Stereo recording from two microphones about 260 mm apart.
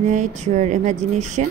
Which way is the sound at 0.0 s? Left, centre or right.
Right.